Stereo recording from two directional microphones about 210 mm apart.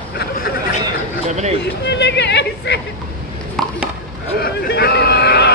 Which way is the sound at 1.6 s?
55° left (ahead or behind).